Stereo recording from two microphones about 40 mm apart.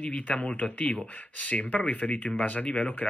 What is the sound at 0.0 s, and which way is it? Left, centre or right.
Speech, left.